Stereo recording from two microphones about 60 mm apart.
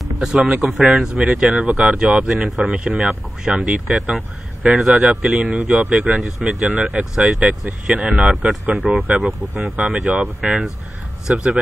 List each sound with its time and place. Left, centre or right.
0.2 s speech: centre
6.1 s speech: centre
6.7 s speech: right
8.6 s speech: right
9.9 s speech: centre